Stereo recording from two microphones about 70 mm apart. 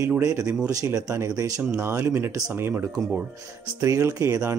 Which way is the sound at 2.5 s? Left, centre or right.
Right.